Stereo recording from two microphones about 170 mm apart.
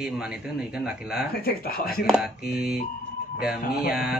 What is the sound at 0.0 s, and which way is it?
Speech, 5° right (ahead or behind).